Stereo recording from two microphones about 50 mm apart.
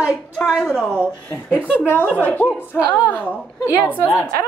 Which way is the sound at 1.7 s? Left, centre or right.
Left.